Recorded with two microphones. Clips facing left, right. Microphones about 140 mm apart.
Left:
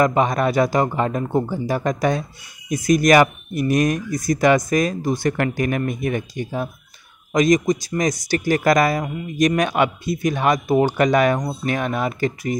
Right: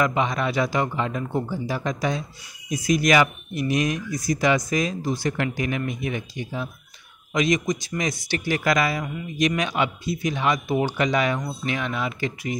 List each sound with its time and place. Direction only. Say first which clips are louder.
0.0 s speech: left 5 dB; 45° left (ahead or behind)
9.6 s speech: left 6 dB; 55° left (ahead or behind)